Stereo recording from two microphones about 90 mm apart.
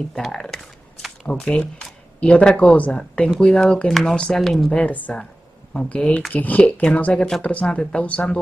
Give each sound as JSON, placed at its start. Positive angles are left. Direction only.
{"t": 0.1, "sound": "speech", "side_deg": 5}